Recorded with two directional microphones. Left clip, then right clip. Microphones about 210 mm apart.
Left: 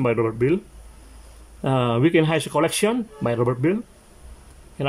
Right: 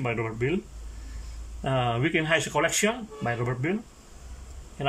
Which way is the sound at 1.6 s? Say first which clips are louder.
Left 6 dB; 20° left (ahead or behind).